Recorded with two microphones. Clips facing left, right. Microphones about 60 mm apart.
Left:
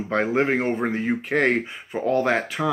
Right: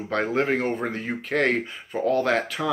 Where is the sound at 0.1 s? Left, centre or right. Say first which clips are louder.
Left 2 dB; centre.